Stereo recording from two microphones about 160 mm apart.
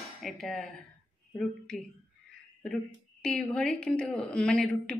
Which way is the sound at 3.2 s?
5° left (ahead or behind).